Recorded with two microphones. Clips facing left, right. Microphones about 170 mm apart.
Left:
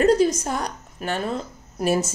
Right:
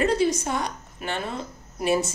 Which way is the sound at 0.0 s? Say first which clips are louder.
Left 4 dB; 45° left (ahead or behind).